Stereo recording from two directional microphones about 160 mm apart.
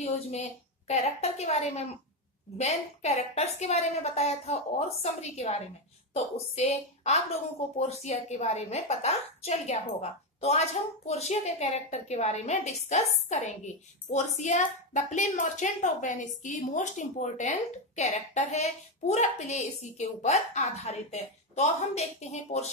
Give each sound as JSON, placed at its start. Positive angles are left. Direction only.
{"t": 0.0, "sound": "a woman's voice", "side_deg": 40}